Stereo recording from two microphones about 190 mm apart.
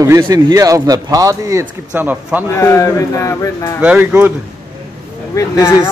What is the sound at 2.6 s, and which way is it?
Speech, 15° left (ahead or behind).